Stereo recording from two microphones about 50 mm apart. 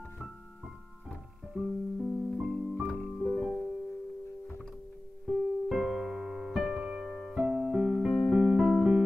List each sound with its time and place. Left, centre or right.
2.0 s music: centre
2.3 s music: centre
5.2 s music: centre
7.3 s keyboard: centre